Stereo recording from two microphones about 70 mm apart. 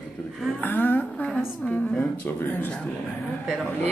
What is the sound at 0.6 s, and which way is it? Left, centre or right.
Speech, left.